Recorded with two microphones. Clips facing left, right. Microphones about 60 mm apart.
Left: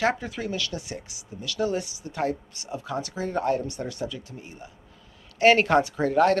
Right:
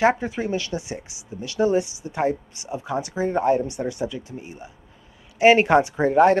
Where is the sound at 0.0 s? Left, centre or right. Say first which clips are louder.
Right 6 dB; right.